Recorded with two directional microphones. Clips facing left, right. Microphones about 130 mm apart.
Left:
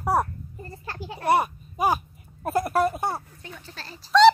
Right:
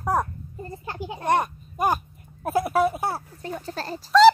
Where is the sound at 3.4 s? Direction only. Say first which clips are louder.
Right 10 dB; 40° right (ahead or behind).